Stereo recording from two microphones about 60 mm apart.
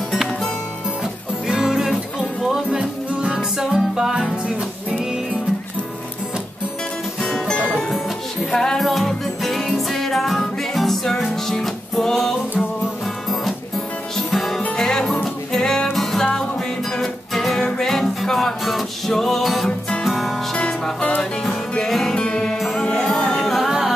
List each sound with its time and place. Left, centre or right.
1.5 s music: centre
7.2 s music: centre
20.5 s music: centre
21.7 s music: centre
22.6 s music: centre